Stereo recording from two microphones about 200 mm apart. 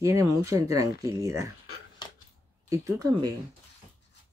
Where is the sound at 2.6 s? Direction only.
15° right (ahead or behind).